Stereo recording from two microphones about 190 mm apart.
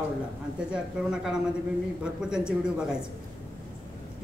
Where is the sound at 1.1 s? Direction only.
5° right (ahead or behind).